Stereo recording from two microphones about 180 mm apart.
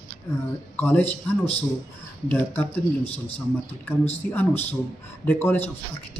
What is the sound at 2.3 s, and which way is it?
Speech, 10° left (ahead or behind).